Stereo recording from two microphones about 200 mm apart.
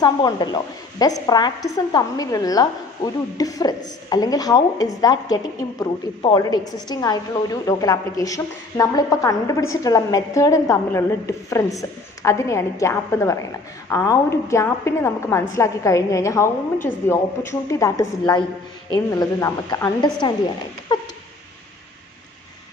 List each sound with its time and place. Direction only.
0.0 s a woman's voice: 20° left (ahead or behind)
20.9 s dog: 20° left (ahead or behind)